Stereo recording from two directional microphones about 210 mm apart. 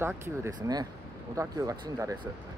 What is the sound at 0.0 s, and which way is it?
Speech, 10° right (ahead or behind).